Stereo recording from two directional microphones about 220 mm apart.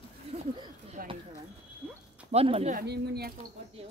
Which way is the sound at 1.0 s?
40° right (ahead or behind).